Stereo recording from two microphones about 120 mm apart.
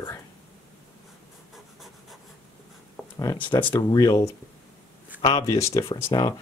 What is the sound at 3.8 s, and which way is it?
Speech, 30° left (ahead or behind).